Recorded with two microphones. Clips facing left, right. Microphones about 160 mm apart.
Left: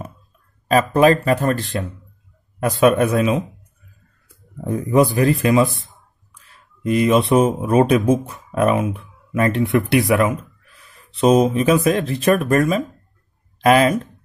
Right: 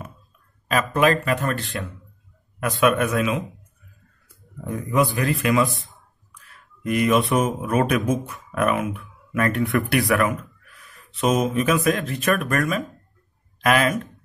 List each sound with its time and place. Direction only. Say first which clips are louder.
1.2 s speech: left 6 dB; 35° left (ahead or behind)
4.6 s speech: left 6 dB; 30° left (ahead or behind)
5.9 s a sound: even; 25° left (ahead or behind)
7.2 s speech: left 6 dB; 25° left (ahead or behind)